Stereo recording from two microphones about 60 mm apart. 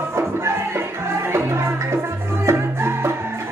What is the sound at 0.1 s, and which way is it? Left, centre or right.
Music, right.